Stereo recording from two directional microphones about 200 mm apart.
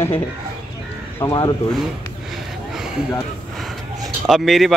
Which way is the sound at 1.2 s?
20° left (ahead or behind).